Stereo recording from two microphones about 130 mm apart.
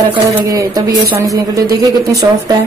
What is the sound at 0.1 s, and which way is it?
Speech, 15° right (ahead or behind).